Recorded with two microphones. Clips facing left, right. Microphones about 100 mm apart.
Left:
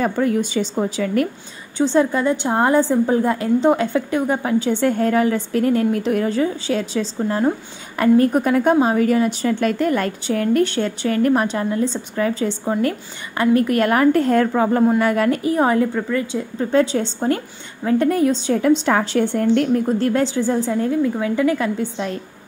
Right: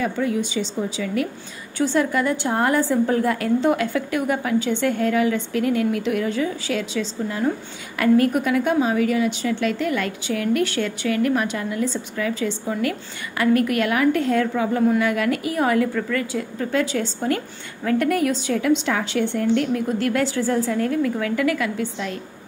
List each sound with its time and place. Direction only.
0.0 s a woman's voice: 50° left (ahead or behind)
1.8 s a woman's voice: 25° left (ahead or behind)